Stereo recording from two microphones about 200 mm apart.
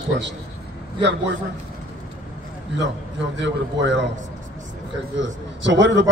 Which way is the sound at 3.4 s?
65° right (ahead or behind).